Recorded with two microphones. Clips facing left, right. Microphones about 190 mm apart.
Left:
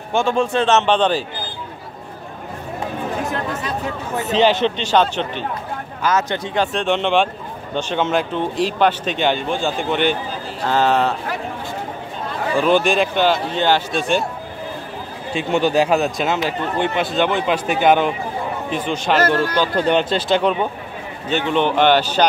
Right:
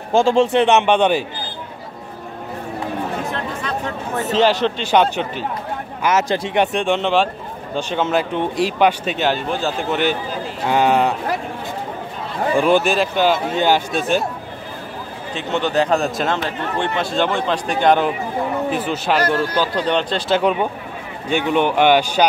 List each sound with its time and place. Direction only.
0.1 s a man's voice: 30° right (ahead or behind); by 1.2 s 10° right (ahead or behind)
4.1 s a man's voice: centre (ahead or behind)
6.0 s a man's voice: 25° right (ahead or behind)
12.5 s a man's voice: 10° right (ahead or behind)
15.3 s speech: 10° left (ahead or behind)
18.7 s a man's voice: 5° right (ahead or behind)
19.7 s a man's voice: 5° left (ahead or behind); by 22.2 s 10° right (ahead or behind)